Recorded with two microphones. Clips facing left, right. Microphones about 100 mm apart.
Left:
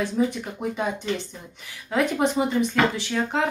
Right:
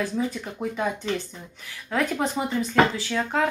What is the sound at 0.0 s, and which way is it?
Speech, 20° left (ahead or behind).